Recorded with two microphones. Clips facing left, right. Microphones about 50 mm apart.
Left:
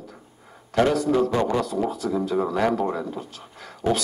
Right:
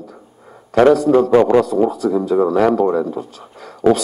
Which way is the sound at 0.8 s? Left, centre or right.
Right.